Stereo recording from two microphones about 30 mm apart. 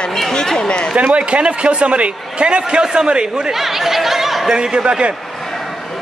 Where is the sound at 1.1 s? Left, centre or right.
Right.